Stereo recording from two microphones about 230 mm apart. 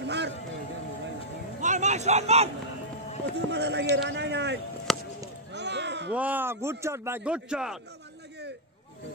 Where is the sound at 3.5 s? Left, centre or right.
Right.